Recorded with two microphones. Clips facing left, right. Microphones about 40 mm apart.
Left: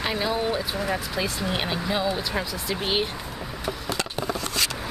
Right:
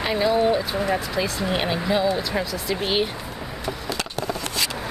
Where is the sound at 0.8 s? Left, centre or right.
Centre.